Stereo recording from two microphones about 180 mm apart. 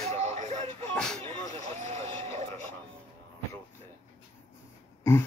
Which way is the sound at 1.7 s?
40° right (ahead or behind).